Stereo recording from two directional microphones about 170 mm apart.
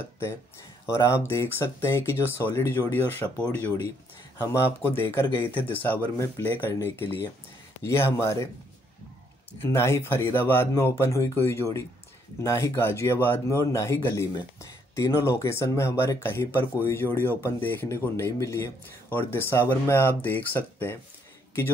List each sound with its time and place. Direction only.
0.0 s speech: 15° left (ahead or behind)
9.6 s speech: 15° left (ahead or behind)